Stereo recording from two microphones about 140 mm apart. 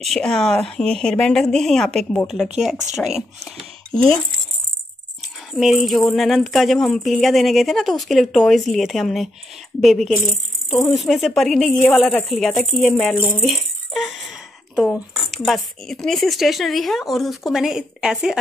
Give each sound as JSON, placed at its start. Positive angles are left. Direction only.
{"t": 0.0, "sound": "speech", "side_deg": 5}
{"t": 5.5, "sound": "speech", "side_deg": 0}
{"t": 13.4, "sound": "a sound", "side_deg": 0}
{"t": 15.0, "sound": "speech", "side_deg": 0}